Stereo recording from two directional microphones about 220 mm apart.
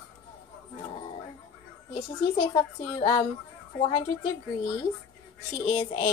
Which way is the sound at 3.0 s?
20° left (ahead or behind).